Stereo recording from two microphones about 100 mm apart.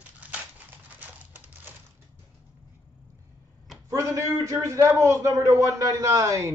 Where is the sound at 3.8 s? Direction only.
30° right (ahead or behind).